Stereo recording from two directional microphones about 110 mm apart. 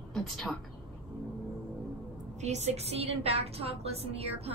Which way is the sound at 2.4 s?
90° right.